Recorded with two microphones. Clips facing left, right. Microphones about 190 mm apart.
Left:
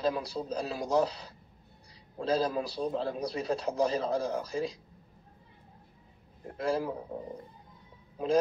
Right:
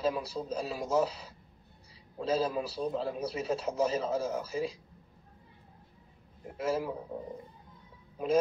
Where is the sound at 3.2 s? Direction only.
35° left (ahead or behind).